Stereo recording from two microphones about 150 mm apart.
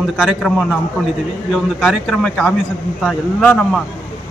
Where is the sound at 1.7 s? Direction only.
Centre (ahead or behind).